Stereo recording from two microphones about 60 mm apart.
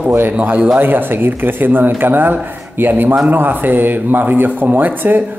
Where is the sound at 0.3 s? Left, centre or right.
Right.